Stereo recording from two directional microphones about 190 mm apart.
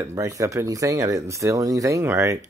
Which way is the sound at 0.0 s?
15° right (ahead or behind).